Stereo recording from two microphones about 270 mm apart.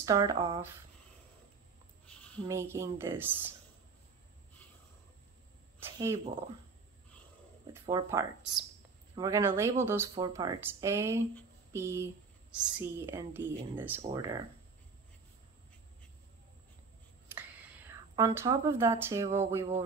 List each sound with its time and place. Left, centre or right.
0.0 s speech: centre
2.4 s speech: centre
5.8 s speech: centre
7.8 s speech: centre
18.1 s speech: centre